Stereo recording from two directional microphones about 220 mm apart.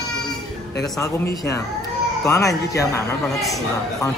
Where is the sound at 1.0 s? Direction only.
15° left (ahead or behind).